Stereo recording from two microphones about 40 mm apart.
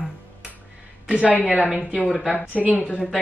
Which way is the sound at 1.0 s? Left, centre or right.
Right.